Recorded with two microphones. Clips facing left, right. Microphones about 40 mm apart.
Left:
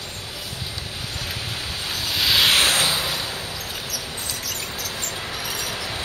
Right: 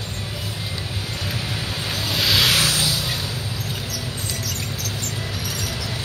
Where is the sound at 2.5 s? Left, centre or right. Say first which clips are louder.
Left 2 dB; left.